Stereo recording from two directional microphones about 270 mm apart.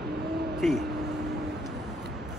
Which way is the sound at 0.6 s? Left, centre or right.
Centre.